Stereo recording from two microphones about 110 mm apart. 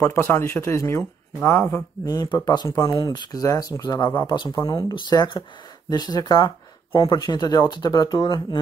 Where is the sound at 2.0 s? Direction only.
35° left (ahead or behind).